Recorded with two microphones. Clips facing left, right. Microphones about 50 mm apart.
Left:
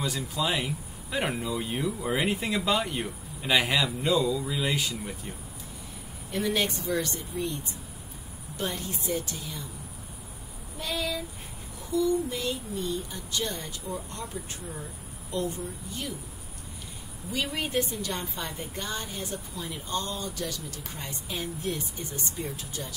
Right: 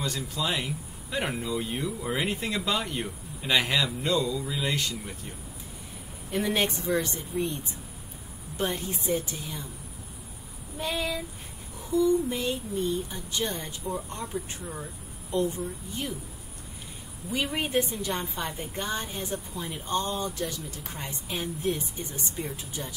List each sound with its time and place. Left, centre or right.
0.0 s speech: centre
6.3 s a woman's voice: centre
11.0 s a woman's voice: right
15.3 s a woman's voice: right
17.3 s a woman's voice: right